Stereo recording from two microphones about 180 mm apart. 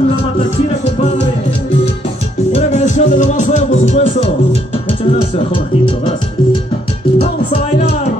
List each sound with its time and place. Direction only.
2.5 s music: 40° left (ahead or behind)